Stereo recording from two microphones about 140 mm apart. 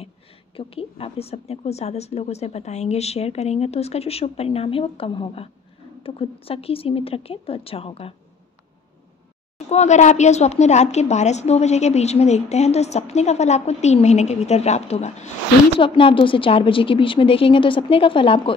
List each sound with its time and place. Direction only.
0.6 s a woman's voice: 45° left (ahead or behind)
9.7 s a woman's voice: 55° left (ahead or behind)
15.8 s a woman's voice: 40° left (ahead or behind)